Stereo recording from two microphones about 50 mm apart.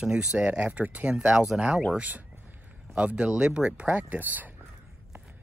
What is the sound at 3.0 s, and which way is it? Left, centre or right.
Speech, right.